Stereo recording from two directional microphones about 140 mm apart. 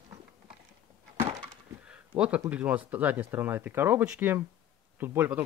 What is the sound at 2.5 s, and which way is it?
Speech, 10° right (ahead or behind).